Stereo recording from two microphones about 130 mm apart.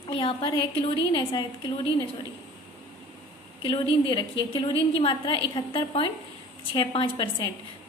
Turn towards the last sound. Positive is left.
turn(degrees=35)  # may be behind; listen again after turning